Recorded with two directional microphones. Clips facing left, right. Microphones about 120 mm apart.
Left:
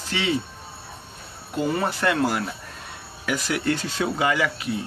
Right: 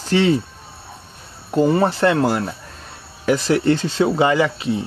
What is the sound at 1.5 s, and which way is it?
Speech, 35° right (ahead or behind).